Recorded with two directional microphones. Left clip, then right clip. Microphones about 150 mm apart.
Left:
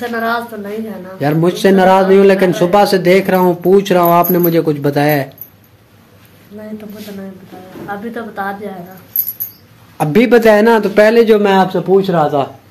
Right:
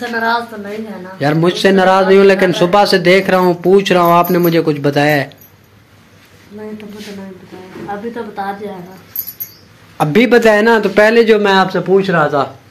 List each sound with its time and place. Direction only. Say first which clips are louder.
0.1 s a man's voice: right 5 dB; 10° left (ahead or behind)
9.9 s a man's voice: even; centre (ahead or behind)
11.4 s a man's voice: even; 15° left (ahead or behind)